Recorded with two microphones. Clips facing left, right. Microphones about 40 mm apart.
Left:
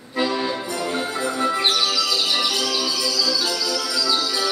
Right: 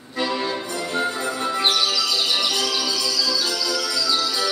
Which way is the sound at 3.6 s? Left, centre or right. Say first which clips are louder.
Even; centre.